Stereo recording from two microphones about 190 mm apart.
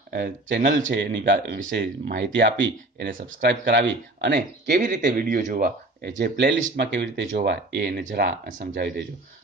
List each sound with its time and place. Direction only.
0.1 s speech: 55° right (ahead or behind)
0.9 s speech: 70° right (ahead or behind)
3.1 s speech: 50° right (ahead or behind)
4.7 s speech: 40° right (ahead or behind)